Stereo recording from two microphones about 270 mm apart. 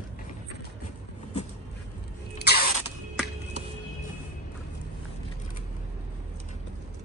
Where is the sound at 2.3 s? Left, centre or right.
Left.